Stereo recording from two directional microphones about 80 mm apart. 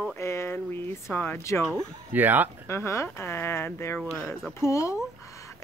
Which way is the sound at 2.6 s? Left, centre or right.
Left.